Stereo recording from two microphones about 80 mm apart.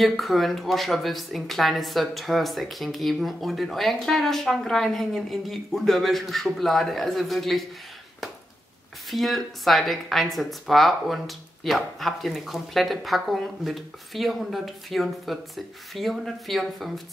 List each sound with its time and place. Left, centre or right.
0.0 s speech: centre
9.1 s speech: centre